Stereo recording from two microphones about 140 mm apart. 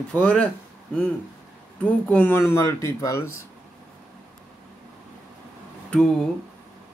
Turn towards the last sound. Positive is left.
turn(degrees=0)  # may be behind; listen again after turning